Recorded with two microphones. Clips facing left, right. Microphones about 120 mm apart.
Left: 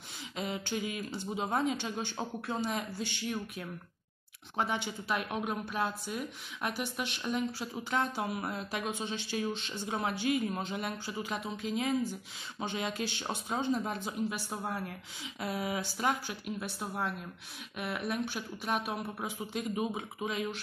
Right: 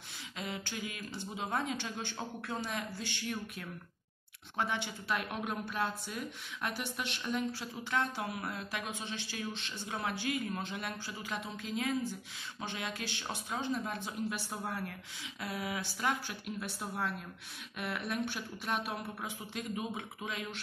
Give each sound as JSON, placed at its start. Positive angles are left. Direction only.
{"t": 0.4, "sound": "speech", "side_deg": 20}